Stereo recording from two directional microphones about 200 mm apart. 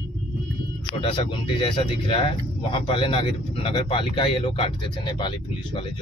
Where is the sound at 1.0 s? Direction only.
25° left (ahead or behind).